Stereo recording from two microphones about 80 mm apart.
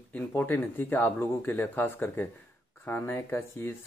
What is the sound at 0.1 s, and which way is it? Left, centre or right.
Speech, left.